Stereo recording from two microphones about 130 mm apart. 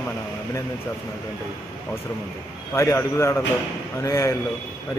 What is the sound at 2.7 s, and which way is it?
Speech, 20° left (ahead or behind).